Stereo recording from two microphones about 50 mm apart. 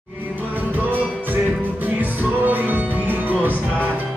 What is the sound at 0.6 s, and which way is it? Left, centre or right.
Music, right.